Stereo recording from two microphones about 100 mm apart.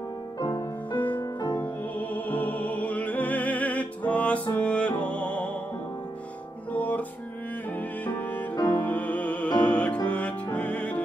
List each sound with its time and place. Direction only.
0.4 s music: 45° left (ahead or behind)
1.6 s music: 15° left (ahead or behind)
6.7 s music: 15° left (ahead or behind)